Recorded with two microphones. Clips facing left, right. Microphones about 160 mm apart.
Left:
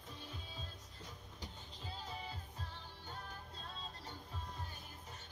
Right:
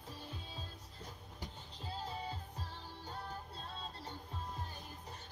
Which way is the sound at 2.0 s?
40° right (ahead or behind).